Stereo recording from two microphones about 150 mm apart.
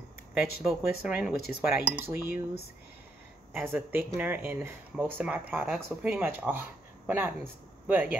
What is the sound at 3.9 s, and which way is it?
Speech, 10° right (ahead or behind).